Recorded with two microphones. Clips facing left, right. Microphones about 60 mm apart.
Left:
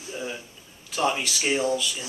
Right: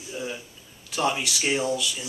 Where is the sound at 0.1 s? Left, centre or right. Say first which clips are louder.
Even; centre.